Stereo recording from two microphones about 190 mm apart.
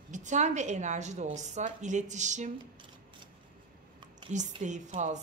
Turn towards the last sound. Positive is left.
turn(degrees=-40)  # may be behind; listen again after turning